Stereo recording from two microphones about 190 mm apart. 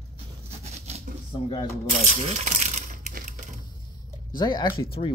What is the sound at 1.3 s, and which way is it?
Speech, 25° left (ahead or behind).